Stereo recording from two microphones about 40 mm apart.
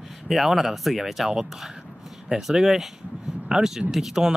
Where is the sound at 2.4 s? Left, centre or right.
Centre.